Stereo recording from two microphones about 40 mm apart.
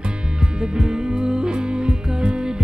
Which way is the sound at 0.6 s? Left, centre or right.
Centre.